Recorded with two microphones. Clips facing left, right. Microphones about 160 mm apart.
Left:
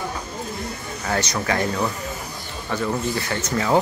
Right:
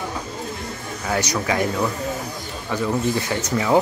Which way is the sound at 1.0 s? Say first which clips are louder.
Right 1 dB; 10° right (ahead or behind).